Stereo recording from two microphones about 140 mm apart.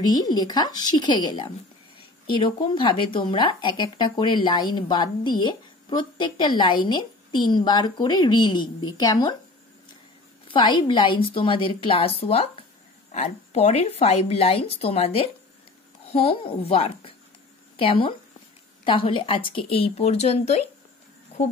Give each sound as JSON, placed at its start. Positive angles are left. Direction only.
{"t": 0.0, "sound": "speech", "side_deg": 30}
{"t": 10.5, "sound": "a woman's voice", "side_deg": 35}